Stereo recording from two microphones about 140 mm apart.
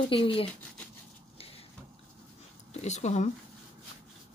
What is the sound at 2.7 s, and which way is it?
Speech, 55° left (ahead or behind).